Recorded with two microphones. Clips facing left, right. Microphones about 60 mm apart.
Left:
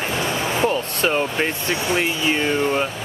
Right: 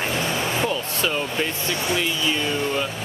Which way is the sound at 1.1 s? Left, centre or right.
Left.